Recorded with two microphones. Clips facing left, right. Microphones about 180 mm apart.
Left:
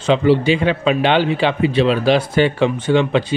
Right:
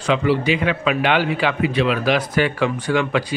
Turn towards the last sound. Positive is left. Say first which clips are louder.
# left 4 dB
turn(degrees=25)  # may be behind; listen again after turning